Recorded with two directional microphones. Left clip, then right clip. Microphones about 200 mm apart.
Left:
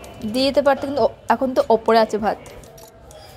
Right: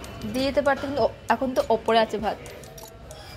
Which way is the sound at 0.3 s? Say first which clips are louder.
Left 6 dB; 40° left (ahead or behind).